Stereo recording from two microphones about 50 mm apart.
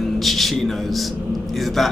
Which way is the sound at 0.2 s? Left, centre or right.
Centre.